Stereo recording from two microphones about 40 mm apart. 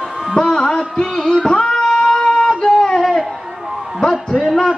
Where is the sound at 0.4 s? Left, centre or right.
Centre.